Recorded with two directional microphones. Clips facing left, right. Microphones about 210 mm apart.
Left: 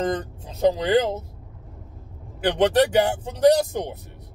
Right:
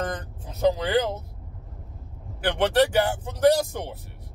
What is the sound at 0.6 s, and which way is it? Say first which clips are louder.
Speech: left 3 dB; 25° left (ahead or behind).